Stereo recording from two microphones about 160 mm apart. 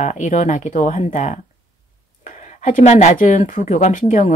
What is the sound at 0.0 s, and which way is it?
Speech, 50° left (ahead or behind).